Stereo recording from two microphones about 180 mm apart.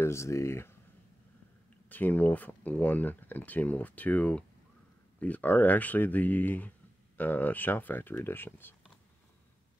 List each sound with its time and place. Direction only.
0.0 s speech: 15° left (ahead or behind)
1.9 s speech: 10° left (ahead or behind)